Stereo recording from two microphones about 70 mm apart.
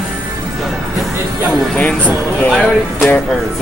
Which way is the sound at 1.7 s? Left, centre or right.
Left.